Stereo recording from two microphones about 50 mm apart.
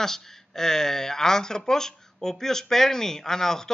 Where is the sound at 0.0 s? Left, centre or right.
Centre.